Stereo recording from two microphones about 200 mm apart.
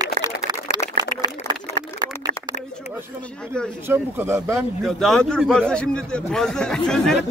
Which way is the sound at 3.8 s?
10° right (ahead or behind).